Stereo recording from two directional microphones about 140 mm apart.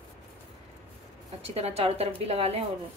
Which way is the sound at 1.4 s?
45° right (ahead or behind).